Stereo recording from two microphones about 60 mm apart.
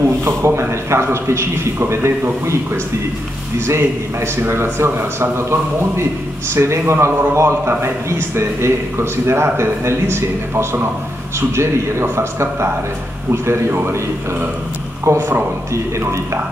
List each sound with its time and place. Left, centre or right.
0.0 s a man's voice: right
15.0 s a man's voice: right